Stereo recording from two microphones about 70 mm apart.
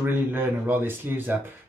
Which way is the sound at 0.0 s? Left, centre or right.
Right.